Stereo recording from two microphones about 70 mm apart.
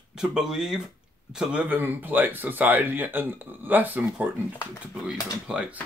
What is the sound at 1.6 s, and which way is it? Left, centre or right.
Speech, right.